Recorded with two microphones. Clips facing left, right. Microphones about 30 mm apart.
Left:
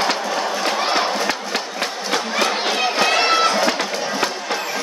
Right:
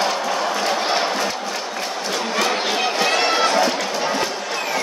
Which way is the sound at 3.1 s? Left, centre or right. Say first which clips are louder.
Left 3 dB; centre.